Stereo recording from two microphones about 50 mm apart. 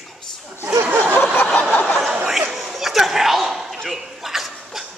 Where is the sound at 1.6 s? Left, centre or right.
Left.